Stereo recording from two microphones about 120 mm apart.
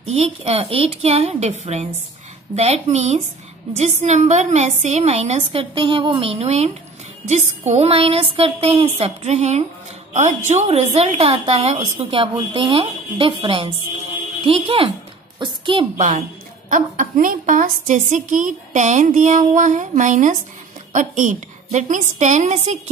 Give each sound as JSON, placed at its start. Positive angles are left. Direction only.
{"t": 0.0, "sound": "a woman's voice", "side_deg": -60}
{"t": 10.1, "sound": "a woman's voice", "side_deg": -80}
{"t": 10.7, "sound": "a woman's voice", "side_deg": -60}
{"t": 16.7, "sound": "a woman's voice", "side_deg": -90}